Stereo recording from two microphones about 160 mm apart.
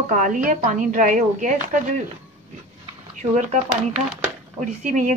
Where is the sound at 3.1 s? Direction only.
50° right (ahead or behind).